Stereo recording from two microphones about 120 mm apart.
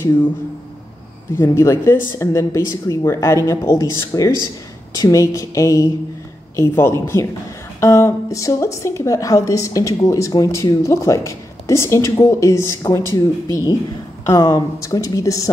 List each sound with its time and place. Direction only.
1.3 s a woman's voice: 20° left (ahead or behind)